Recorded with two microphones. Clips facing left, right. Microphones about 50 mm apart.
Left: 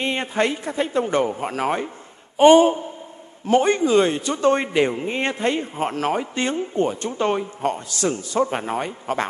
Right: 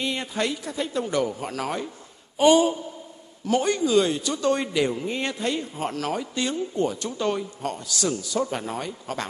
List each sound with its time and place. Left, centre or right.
0.0 s a man's voice: left